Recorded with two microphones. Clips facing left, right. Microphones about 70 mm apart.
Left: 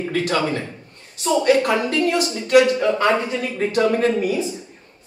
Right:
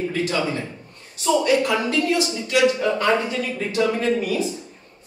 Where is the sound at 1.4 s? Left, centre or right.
Left.